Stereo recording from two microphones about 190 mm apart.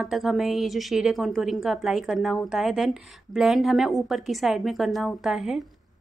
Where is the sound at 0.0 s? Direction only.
Centre (ahead or behind).